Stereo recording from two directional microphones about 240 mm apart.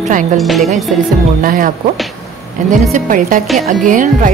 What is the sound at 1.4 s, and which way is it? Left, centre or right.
Speech, right.